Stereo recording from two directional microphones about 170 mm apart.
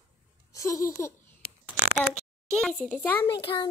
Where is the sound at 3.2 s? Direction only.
25° left (ahead or behind).